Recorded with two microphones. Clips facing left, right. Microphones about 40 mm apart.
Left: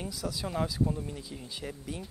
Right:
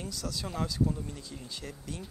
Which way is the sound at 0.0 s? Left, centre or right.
Centre.